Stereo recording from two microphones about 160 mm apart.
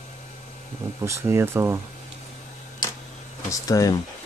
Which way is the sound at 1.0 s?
15° right (ahead or behind).